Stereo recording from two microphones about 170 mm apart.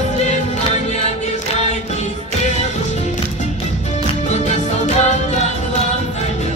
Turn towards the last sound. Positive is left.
turn(degrees=45)  # may be behind; listen again after turning